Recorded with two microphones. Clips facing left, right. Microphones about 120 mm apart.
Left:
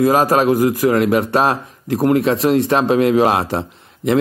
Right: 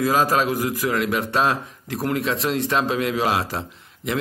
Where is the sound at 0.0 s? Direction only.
55° left (ahead or behind).